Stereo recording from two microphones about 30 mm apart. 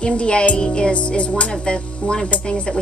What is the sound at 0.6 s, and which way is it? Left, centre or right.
Speech, left.